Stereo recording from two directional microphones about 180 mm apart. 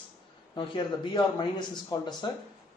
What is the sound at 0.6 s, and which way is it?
Speech, 25° left (ahead or behind).